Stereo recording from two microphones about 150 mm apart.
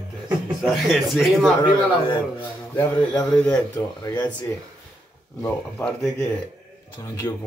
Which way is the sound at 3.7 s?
25° left (ahead or behind).